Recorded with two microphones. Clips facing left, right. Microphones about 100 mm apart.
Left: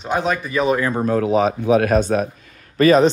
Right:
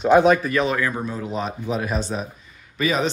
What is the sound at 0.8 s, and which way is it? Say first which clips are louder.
Speech: left 4 dB; 30° left (ahead or behind).